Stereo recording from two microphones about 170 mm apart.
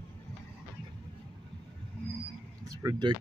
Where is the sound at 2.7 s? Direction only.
25° right (ahead or behind).